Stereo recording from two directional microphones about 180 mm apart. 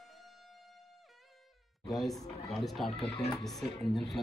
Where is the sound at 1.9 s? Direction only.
Centre (ahead or behind).